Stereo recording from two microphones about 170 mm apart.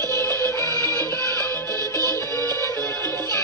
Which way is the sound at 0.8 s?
20° right (ahead or behind).